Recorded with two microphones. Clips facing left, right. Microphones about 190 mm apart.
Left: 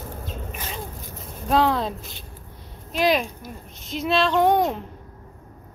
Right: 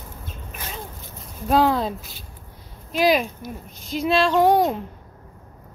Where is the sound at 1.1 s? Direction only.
Centre (ahead or behind).